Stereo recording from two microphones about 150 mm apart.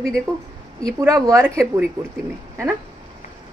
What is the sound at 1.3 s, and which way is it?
Speech, 20° right (ahead or behind).